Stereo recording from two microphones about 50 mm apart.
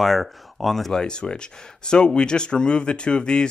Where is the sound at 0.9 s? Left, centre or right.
Centre.